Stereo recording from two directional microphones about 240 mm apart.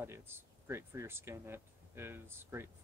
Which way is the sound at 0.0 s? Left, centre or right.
Centre.